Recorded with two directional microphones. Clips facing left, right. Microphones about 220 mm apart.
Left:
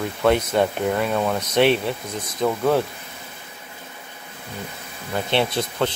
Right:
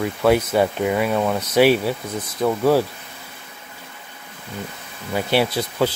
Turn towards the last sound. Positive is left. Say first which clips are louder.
# right 2 dB
turn(degrees=-5)  # may be behind; listen again after turning